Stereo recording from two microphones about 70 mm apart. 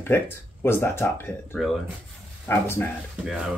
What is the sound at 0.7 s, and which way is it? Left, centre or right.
Speech, left.